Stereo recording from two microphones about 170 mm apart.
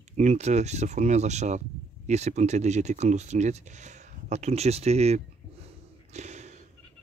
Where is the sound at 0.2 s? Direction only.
40° right (ahead or behind).